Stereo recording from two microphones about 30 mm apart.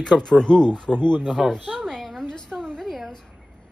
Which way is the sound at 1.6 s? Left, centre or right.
Right.